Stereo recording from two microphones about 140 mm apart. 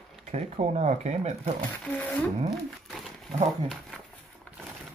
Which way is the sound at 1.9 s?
10° left (ahead or behind).